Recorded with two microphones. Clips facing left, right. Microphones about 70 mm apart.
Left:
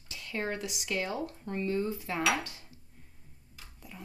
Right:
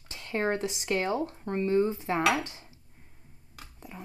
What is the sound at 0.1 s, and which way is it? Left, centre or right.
Speech, right.